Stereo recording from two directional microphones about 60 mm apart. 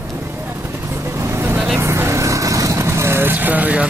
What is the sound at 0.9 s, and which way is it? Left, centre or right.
Vehicle, right.